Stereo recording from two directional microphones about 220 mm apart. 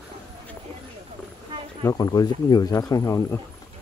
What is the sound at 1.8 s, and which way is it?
Speech, 15° left (ahead or behind).